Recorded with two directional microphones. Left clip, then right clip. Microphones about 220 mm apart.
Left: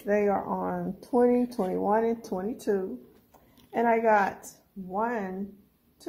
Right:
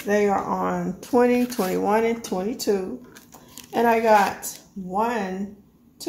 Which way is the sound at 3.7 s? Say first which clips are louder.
Right 5 dB; 25° left (ahead or behind).